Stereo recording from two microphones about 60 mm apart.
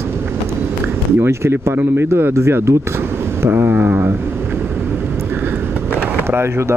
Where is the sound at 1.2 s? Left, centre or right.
Right.